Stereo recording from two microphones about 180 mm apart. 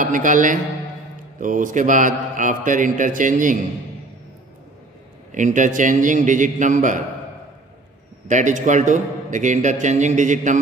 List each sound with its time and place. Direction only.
0.0 s a man's voice: 45° right (ahead or behind)
5.3 s a man's voice: 45° right (ahead or behind)
8.3 s a man's voice: 45° right (ahead or behind)